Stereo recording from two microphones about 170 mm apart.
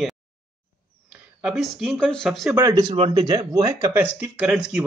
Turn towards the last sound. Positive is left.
turn(degrees=-5)  # may be behind; listen again after turning